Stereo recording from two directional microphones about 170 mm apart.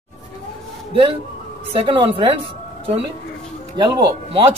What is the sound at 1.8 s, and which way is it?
Speech, 30° right (ahead or behind).